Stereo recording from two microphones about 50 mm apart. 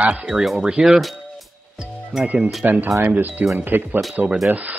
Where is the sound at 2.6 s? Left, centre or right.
Right.